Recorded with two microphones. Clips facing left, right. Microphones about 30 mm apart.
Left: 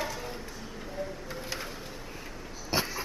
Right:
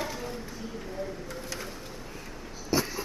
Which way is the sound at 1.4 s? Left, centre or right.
Centre.